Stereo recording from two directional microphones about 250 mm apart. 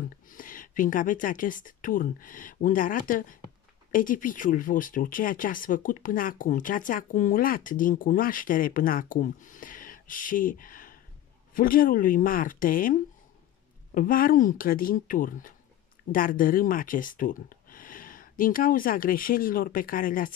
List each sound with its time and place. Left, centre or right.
0.3 s speech: left